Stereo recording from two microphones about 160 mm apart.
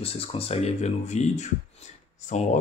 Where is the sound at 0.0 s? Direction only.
35° left (ahead or behind).